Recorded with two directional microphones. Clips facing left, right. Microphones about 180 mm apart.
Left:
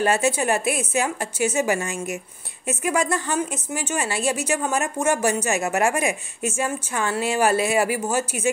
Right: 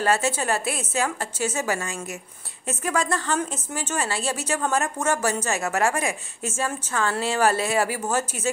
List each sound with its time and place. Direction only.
0.0 s a woman's voice: 15° left (ahead or behind)